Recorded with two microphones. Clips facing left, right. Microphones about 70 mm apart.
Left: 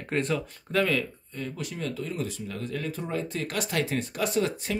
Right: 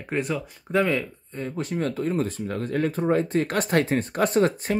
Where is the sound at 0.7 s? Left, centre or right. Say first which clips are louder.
Right 3 dB; right.